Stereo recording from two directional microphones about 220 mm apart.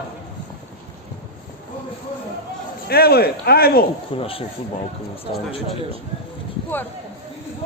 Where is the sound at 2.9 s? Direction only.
45° left (ahead or behind).